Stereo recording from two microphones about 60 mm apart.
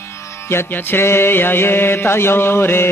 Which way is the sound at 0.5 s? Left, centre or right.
Left.